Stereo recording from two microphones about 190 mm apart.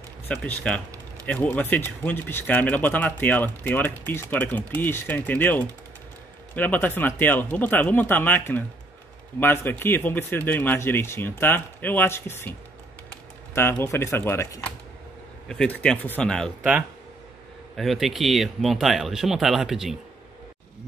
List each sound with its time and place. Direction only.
0.3 s speech: 5° left (ahead or behind)
13.6 s speech: 10° left (ahead or behind)
17.7 s speech: centre (ahead or behind)